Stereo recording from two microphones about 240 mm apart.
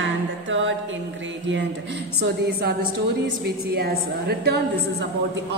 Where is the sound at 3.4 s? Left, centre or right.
Right.